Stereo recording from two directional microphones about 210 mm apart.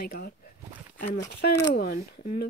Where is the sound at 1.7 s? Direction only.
45° left (ahead or behind).